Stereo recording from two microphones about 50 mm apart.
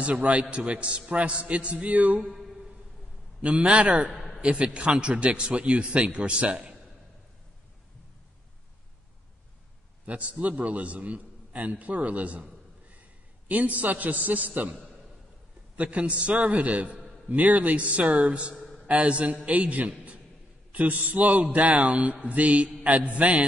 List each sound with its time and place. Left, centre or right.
0.0 s a man's voice: right
3.4 s a man's voice: right
4.1 s a sound: centre
4.4 s a man's voice: right
10.0 s a man's voice: right
13.5 s a man's voice: right